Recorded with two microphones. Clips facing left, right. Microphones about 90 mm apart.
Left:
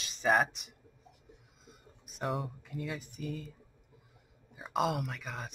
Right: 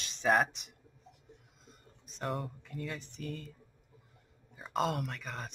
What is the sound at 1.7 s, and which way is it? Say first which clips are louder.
Speech: left 2 dB; 5° left (ahead or behind).